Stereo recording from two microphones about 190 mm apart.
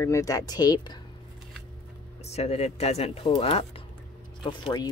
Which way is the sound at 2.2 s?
35° left (ahead or behind).